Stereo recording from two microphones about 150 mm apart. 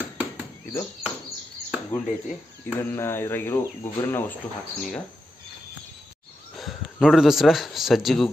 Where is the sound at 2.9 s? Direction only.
15° left (ahead or behind).